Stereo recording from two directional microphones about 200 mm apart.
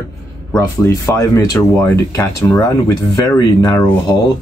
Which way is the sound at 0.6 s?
15° left (ahead or behind).